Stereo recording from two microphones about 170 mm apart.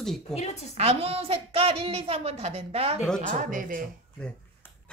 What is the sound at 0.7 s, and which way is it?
A woman's voice, 35° right (ahead or behind).